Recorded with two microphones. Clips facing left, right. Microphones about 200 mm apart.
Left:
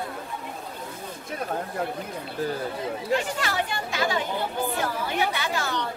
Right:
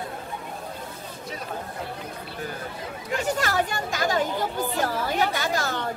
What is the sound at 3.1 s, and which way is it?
Speech, 45° right (ahead or behind).